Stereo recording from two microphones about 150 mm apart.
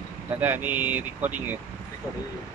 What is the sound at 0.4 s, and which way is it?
Mantra, 10° right (ahead or behind).